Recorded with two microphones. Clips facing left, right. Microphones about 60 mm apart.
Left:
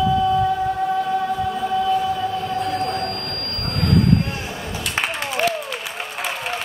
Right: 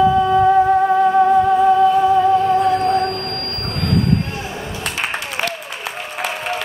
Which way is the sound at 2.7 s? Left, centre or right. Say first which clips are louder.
Right 7 dB; right.